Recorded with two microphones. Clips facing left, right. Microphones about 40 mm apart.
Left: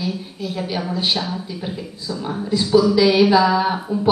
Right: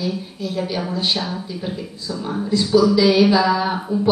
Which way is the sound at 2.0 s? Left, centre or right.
Centre.